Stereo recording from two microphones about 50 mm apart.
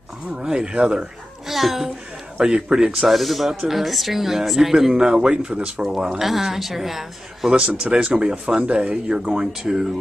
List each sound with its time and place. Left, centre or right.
0.4 s speech: centre
1.5 s speech: centre
2.3 s speech: centre
7.5 s speech: centre